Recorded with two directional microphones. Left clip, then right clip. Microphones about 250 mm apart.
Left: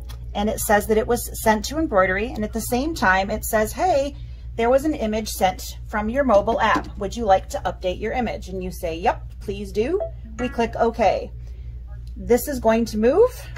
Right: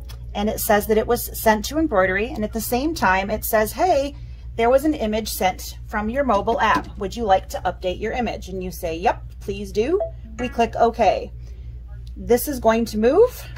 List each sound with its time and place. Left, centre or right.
0.1 s speech: right
12.3 s speech: right